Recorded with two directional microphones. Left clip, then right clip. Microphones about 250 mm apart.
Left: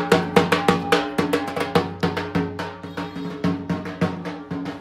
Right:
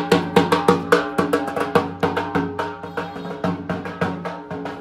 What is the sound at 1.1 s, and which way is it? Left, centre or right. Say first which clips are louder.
Music: right 2 dB; centre.